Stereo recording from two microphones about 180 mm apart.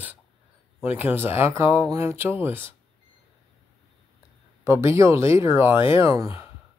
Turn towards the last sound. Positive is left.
turn(degrees=-15)  # may be behind; listen again after turning